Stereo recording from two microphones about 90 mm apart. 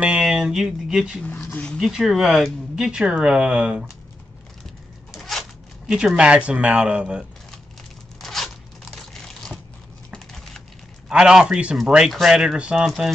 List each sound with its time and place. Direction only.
0.0 s speech: 10° right (ahead or behind)
1.2 s a sound: 20° left (ahead or behind)
1.8 s speech: centre (ahead or behind)
5.1 s a sound: 5° left (ahead or behind)
5.9 s speech: 10° right (ahead or behind)
8.2 s tearing: 5° left (ahead or behind)
9.1 s typing: 5° left (ahead or behind)
11.1 s speech: 10° right (ahead or behind)